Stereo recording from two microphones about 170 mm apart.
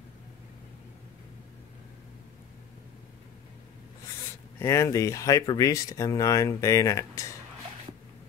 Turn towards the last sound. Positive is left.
turn(degrees=20)  # may be behind; listen again after turning